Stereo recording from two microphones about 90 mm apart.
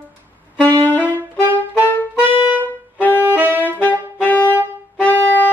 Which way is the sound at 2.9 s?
20° left (ahead or behind).